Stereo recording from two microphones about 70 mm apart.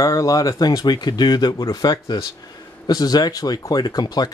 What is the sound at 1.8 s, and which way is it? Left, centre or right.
Speech, left.